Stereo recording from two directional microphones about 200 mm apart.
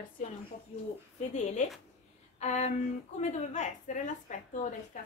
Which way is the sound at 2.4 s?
35° left (ahead or behind).